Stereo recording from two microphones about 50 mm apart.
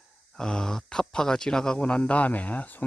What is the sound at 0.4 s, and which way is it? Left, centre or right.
Speech, centre.